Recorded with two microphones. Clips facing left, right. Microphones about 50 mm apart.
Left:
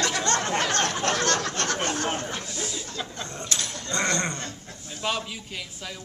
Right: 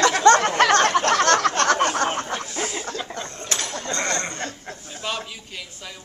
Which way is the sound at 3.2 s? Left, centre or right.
Right.